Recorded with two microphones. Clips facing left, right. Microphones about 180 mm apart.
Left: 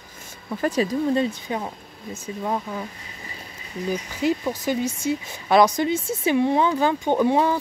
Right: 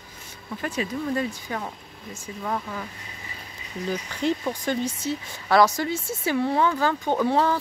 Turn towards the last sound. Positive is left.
turn(degrees=15)  # may be behind; listen again after turning